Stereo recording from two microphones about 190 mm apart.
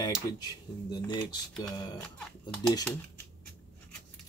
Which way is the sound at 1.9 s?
5° left (ahead or behind).